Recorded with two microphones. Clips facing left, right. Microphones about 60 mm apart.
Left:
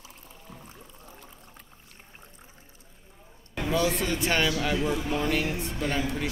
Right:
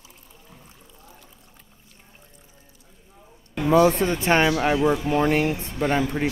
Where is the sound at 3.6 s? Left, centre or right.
Right.